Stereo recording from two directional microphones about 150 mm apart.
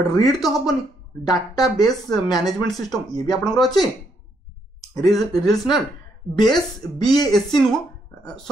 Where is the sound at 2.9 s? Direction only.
25° left (ahead or behind).